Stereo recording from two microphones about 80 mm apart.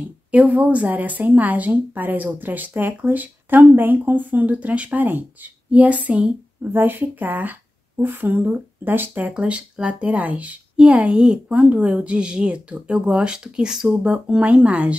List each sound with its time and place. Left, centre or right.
0.0 s a woman's voice: centre
9.3 s speech: centre